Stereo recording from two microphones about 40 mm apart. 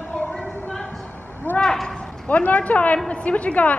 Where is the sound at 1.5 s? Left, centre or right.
Centre.